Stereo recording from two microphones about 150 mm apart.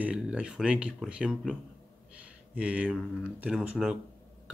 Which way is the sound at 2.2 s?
10° right (ahead or behind).